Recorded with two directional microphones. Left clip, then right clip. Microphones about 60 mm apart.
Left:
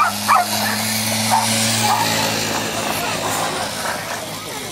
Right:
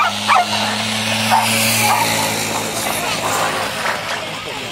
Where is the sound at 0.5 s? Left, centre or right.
Centre.